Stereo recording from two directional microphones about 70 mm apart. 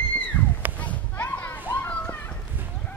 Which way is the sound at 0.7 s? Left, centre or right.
Left.